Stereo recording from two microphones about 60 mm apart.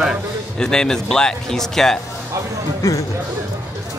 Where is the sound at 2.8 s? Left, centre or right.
Left.